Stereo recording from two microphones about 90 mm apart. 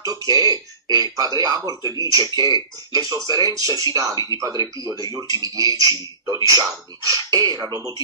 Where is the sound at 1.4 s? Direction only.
40° right (ahead or behind).